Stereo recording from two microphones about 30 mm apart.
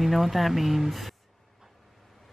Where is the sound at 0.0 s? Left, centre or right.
Centre.